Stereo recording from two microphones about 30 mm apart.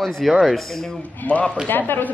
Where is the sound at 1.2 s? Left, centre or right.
Left.